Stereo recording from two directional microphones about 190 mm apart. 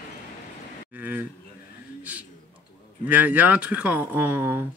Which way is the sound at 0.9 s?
10° right (ahead or behind).